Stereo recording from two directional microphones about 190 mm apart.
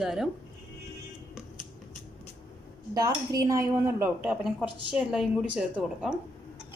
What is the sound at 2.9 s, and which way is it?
Speech, 20° right (ahead or behind).